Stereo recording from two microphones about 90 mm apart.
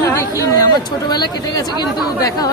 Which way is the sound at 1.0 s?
50° left (ahead or behind).